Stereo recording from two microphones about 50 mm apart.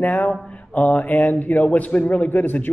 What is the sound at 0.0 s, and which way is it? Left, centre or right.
A man's voice, left.